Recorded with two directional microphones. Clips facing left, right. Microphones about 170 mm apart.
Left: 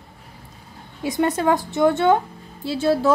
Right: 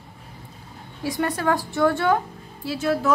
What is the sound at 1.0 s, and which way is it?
A woman's voice, 20° left (ahead or behind).